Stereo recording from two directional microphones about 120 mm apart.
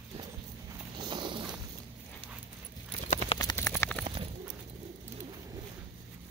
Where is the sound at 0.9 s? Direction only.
40° right (ahead or behind).